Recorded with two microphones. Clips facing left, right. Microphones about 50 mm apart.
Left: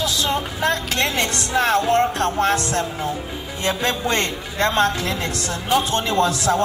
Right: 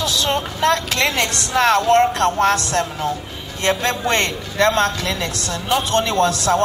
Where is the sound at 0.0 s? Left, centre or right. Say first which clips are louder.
Right 2 dB; right.